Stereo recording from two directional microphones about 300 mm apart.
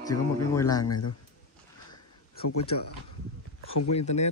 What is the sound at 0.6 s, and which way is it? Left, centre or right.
Speech, centre.